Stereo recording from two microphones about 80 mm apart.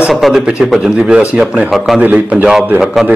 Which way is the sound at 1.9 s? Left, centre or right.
Centre.